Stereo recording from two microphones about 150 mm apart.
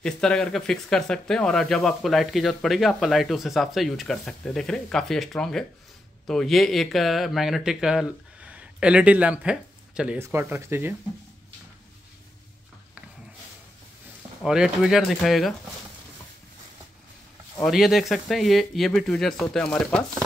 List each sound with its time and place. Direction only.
0.0 s speech: 5° left (ahead or behind); by 11.0 s 15° right (ahead or behind)
14.4 s speech: 5° right (ahead or behind)
17.6 s speech: centre (ahead or behind)